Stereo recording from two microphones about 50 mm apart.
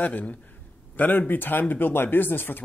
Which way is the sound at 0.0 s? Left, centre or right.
Left.